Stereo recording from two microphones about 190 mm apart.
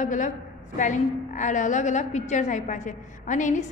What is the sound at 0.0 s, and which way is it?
A woman's voice, 40° left (ahead or behind).